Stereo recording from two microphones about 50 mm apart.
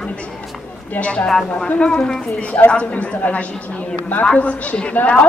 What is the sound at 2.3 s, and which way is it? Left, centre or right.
A woman's voice, left.